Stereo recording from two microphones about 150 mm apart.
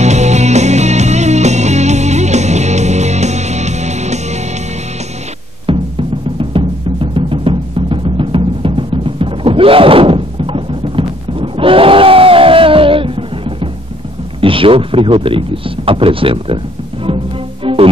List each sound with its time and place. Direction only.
0.0 s music: 50° right (ahead or behind)
5.7 s music: 35° right (ahead or behind)
14.4 s speech: 35° right (ahead or behind)